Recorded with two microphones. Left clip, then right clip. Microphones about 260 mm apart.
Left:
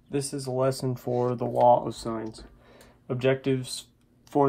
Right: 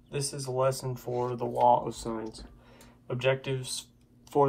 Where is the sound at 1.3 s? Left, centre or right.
Left.